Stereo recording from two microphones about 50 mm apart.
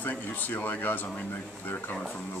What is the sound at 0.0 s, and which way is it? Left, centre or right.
Speech, left.